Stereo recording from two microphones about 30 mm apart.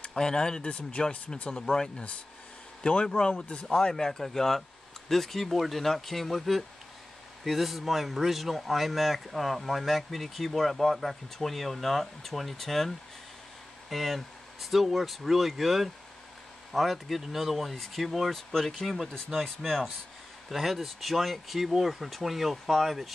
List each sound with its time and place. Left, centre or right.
0.0 s speech: left
0.6 s speech: left
3.7 s speech: left
7.4 s speech: centre
20.4 s speech: centre